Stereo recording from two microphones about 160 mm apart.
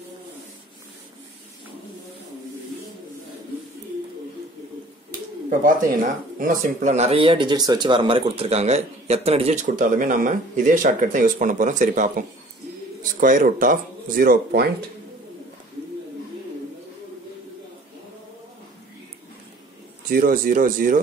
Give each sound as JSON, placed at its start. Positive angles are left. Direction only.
{"t": 5.5, "sound": "speech", "side_deg": -55}
{"t": 20.1, "sound": "speech", "side_deg": -65}